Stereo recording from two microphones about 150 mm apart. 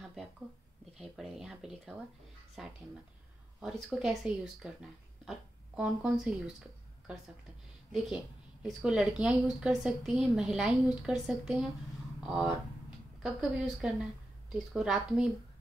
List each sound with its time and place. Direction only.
0.0 s a sound: centre (ahead or behind)
0.9 s a woman's voice: centre (ahead or behind)
7.9 s a woman's voice: 5° right (ahead or behind)